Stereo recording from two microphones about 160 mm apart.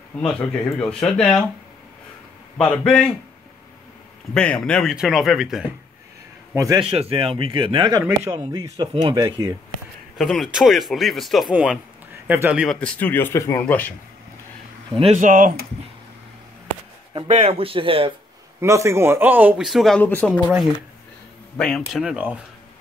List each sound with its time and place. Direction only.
0.3 s speech: 5° left (ahead or behind)
2.6 s speech: 5° left (ahead or behind)
4.3 s speech: 5° left (ahead or behind)
6.5 s speech: 20° right (ahead or behind)
6.8 s a man's voice: 35° right (ahead or behind)
10.1 s a man's voice: centre (ahead or behind)
12.6 s speech: 10° left (ahead or behind)
15.1 s speech: 55° right (ahead or behind)
17.3 s a man's voice: 40° right (ahead or behind)
18.6 s a man's voice: 20° right (ahead or behind); by 20.0 s centre (ahead or behind)
20.0 s speech: 10° left (ahead or behind)
21.5 s speech: 5° left (ahead or behind)
22.0 s a man's voice: 10° right (ahead or behind)